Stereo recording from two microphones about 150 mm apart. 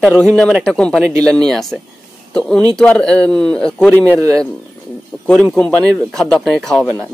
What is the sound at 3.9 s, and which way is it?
Speech, 15° right (ahead or behind).